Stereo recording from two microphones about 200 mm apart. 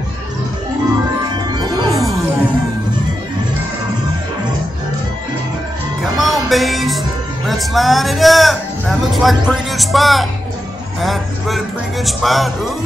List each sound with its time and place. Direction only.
1.5 s music: 20° right (ahead or behind)
6.1 s music: centre (ahead or behind)
7.4 s speech: centre (ahead or behind)
11.0 s music: centre (ahead or behind)
12.1 s speech: centre (ahead or behind)